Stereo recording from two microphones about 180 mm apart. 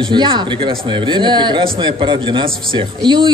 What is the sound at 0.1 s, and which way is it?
Speech, 25° right (ahead or behind).